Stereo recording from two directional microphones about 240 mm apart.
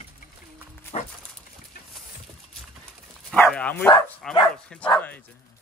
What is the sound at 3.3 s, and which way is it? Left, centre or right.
Speech, centre.